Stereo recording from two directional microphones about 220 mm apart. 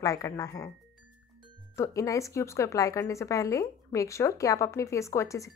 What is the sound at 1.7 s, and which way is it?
A woman's voice, 15° left (ahead or behind).